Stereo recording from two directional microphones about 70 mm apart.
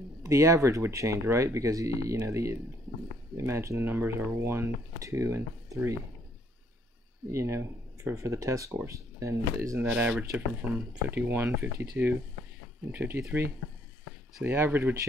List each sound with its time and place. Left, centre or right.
0.2 s speech: right
3.8 s speech: right
7.2 s speech: right
9.8 s speech: right